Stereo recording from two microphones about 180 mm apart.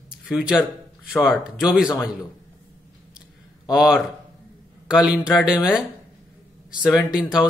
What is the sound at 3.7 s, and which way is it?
Speech, 5° right (ahead or behind).